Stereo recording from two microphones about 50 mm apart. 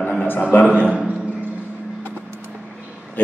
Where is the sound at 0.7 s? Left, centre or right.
Right.